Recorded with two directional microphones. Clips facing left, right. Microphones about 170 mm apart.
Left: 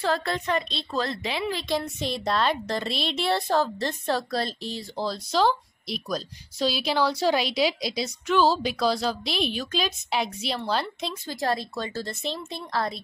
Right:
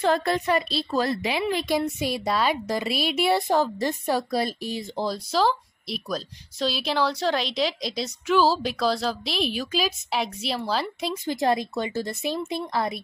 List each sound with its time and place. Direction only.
0.0 s a woman's voice: 15° right (ahead or behind)
0.6 s a woman's voice: 5° right (ahead or behind)
5.3 s a woman's voice: centre (ahead or behind)
11.2 s speech: 20° right (ahead or behind)